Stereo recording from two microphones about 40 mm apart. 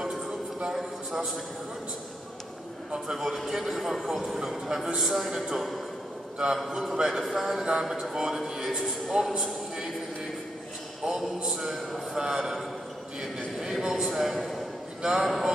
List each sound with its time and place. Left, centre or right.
0.7 s a man's voice: centre
2.9 s a man's voice: centre
6.3 s a man's voice: centre
6.6 s a man's voice: centre
11.1 s a sound: centre
11.4 s a man's voice: centre
15.0 s speech: centre
15.2 s a man's voice: centre